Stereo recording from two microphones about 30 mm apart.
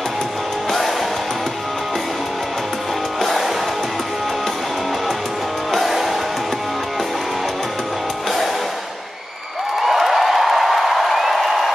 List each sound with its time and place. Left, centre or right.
0.7 s music: centre
3.2 s music: centre
5.7 s music: centre
9.8 s a sound: centre